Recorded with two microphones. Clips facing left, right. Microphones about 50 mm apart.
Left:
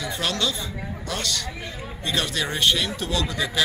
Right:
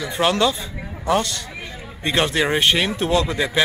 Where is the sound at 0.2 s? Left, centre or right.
Right.